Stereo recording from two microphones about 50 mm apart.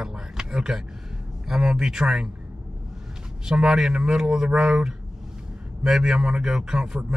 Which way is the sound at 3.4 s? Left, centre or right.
Centre.